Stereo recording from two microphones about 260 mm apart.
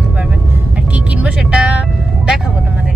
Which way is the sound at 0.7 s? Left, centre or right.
Centre.